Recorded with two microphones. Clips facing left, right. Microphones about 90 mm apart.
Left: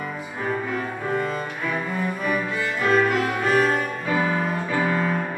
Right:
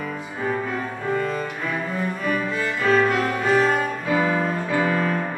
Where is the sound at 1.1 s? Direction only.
5° left (ahead or behind).